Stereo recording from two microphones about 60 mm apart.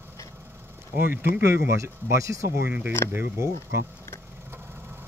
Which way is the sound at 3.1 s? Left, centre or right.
Right.